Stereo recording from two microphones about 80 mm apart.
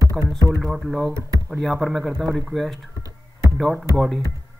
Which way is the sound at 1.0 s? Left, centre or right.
Right.